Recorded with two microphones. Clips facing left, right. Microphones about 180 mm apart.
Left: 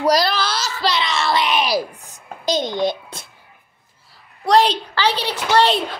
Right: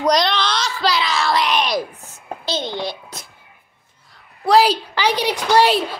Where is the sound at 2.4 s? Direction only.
15° left (ahead or behind).